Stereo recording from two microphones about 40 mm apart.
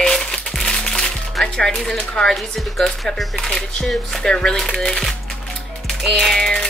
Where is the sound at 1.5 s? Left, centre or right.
Centre.